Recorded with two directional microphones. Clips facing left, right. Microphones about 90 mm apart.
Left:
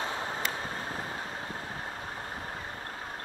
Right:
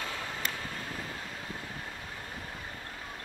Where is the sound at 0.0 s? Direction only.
30° left (ahead or behind).